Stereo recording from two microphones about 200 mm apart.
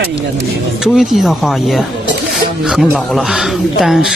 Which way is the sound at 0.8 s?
Centre (ahead or behind).